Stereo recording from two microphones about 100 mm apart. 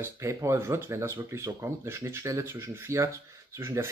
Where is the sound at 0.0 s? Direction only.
30° right (ahead or behind).